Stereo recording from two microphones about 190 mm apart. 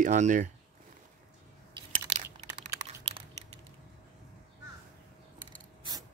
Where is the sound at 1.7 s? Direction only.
25° right (ahead or behind).